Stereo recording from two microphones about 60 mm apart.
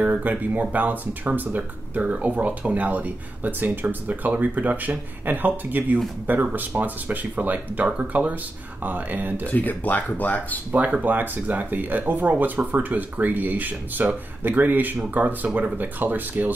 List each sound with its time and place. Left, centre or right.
0.0 s speech: right
9.5 s speech: left
10.7 s speech: right